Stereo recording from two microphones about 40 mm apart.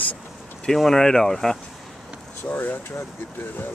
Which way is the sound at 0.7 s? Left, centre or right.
Centre.